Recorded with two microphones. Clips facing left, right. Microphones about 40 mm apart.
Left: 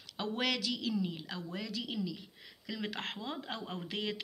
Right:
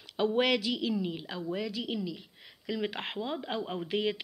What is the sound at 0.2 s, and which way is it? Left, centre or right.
Speech, right.